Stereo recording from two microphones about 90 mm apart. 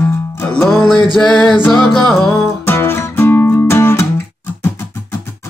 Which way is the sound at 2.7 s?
25° left (ahead or behind).